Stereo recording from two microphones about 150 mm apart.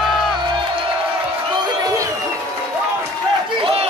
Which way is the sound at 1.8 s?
25° right (ahead or behind).